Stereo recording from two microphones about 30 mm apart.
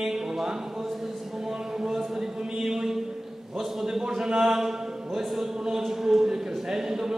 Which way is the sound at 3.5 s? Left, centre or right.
Centre.